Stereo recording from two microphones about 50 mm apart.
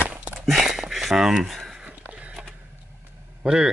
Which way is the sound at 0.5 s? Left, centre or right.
Centre.